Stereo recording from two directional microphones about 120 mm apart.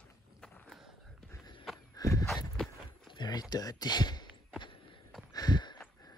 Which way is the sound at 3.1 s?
35° left (ahead or behind).